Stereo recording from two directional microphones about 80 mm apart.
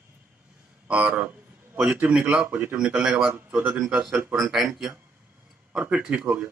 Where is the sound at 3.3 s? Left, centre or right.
Right.